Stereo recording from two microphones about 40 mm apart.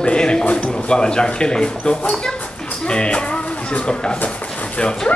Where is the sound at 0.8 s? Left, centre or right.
Left.